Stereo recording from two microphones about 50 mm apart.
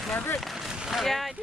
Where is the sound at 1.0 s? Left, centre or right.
Centre.